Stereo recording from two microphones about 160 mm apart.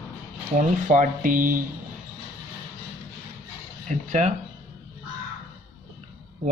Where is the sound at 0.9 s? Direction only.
55° right (ahead or behind).